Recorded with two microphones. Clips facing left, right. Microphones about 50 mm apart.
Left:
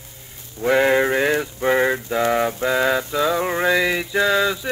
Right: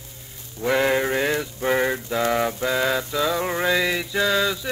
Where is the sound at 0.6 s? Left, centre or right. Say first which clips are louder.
Left 4 dB; centre.